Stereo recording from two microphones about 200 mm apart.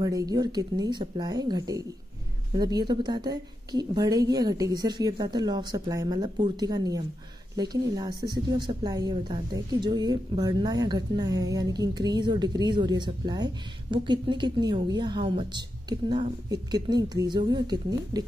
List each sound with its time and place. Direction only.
0.0 s speech: 20° right (ahead or behind)